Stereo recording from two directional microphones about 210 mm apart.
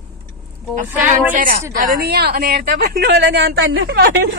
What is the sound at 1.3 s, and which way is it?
A woman's voice, 40° right (ahead or behind).